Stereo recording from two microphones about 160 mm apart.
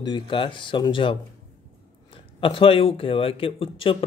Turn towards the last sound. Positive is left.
turn(degrees=35)  # may be behind; listen again after turning